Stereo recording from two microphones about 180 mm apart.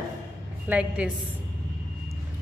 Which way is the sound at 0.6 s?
5° right (ahead or behind).